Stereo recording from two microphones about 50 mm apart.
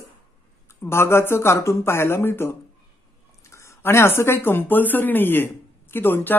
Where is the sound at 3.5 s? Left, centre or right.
Left.